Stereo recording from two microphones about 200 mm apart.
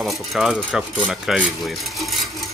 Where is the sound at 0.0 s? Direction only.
Centre (ahead or behind).